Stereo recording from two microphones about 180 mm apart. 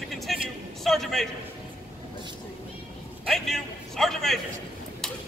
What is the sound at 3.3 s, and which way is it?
A man's voice, centre (ahead or behind).